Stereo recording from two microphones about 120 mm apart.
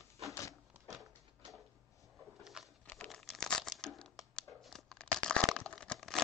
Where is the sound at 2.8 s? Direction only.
10° left (ahead or behind).